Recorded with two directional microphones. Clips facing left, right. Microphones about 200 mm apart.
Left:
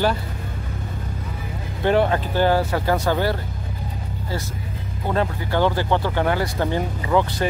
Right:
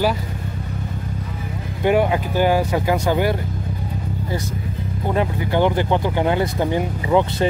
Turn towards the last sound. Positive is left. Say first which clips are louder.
# right 3 dB
turn(degrees=-20)  # may be behind; listen again after turning